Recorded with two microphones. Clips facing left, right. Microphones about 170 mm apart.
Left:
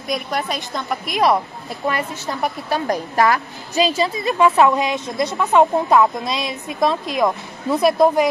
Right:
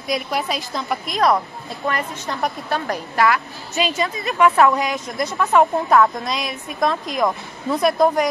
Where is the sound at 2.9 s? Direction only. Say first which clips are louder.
Left 1 dB; 40° left (ahead or behind).